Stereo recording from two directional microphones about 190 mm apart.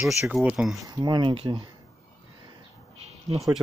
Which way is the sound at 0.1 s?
5° right (ahead or behind).